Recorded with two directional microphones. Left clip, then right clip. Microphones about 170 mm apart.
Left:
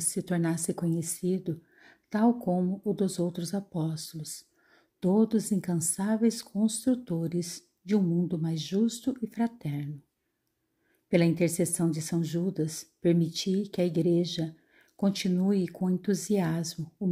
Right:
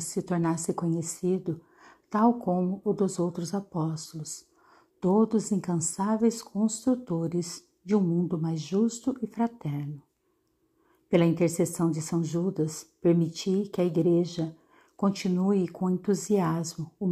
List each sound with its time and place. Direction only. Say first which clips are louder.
0.0 s a woman's voice: right 2 dB; 25° left (ahead or behind)
11.1 s a woman's voice: right 2 dB; 20° left (ahead or behind)